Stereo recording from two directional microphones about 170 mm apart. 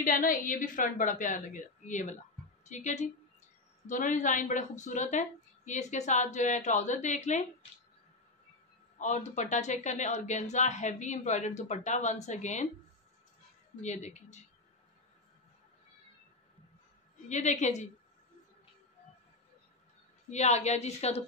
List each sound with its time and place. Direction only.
0.0 s a woman's voice: 50° left (ahead or behind)
8.9 s speech: 45° left (ahead or behind)
13.7 s speech: 45° left (ahead or behind)
17.3 s speech: 45° left (ahead or behind)
20.2 s a woman's voice: 40° left (ahead or behind)